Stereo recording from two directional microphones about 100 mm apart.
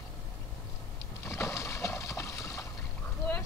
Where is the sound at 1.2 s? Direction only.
30° left (ahead or behind).